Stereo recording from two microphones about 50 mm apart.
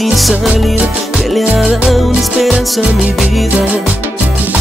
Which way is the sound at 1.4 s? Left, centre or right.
Right.